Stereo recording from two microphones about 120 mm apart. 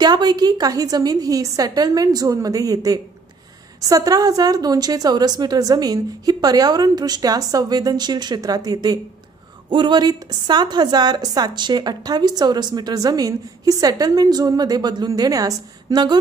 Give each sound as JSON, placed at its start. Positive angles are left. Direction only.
{"t": 0.0, "sound": "a woman's voice", "side_deg": -35}